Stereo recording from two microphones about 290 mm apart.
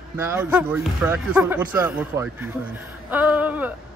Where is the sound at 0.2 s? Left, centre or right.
Centre.